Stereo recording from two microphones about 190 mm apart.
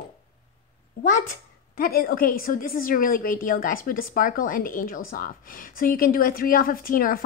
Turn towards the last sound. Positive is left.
turn(degrees=50)  # may be behind; listen again after turning